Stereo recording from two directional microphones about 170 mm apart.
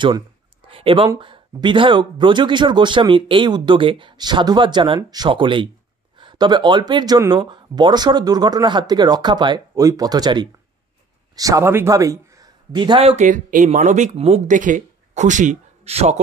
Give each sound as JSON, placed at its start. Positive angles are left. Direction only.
{"t": 0.7, "sound": "a man's voice", "side_deg": -30}
{"t": 13.1, "sound": "speech", "side_deg": -50}
{"t": 14.6, "sound": "speech", "side_deg": -50}